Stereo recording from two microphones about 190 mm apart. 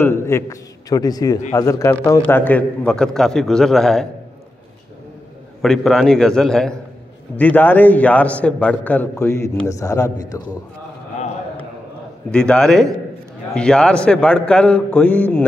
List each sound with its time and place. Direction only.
0.0 s a man's voice: 15° left (ahead or behind)
5.6 s a man's voice: centre (ahead or behind)
12.3 s a man's voice: 5° left (ahead or behind)